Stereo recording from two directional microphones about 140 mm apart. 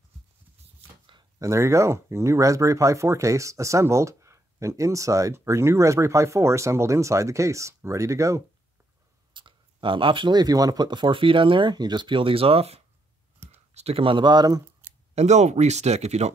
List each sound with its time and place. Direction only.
1.4 s speech: 20° right (ahead or behind)
9.3 s speech: 35° right (ahead or behind)
15.1 s speech: 55° right (ahead or behind)